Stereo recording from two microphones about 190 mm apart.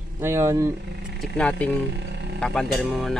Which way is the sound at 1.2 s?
5° left (ahead or behind).